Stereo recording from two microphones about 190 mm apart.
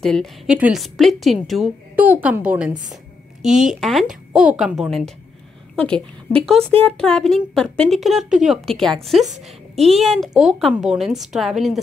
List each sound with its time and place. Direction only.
0.0 s a woman's voice: centre (ahead or behind)
9.3 s a woman's voice: 35° right (ahead or behind)
9.9 s a woman's voice: centre (ahead or behind)